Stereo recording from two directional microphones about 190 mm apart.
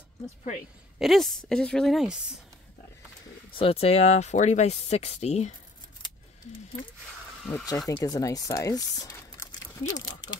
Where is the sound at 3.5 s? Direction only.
30° left (ahead or behind).